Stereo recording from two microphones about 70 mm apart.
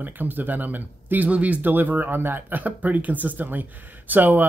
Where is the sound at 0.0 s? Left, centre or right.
Right.